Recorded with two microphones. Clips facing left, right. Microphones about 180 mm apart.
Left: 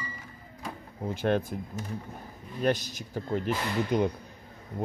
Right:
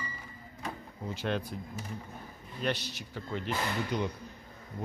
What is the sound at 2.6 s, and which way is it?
Speech, 45° left (ahead or behind).